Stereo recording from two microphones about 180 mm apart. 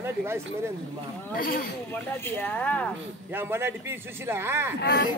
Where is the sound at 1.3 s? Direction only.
55° left (ahead or behind).